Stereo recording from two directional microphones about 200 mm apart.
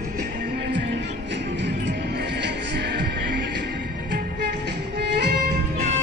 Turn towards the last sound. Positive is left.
turn(degrees=-55)  # may be behind; listen again after turning